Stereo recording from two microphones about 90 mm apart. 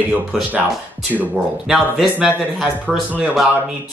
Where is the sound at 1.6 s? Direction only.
5° right (ahead or behind).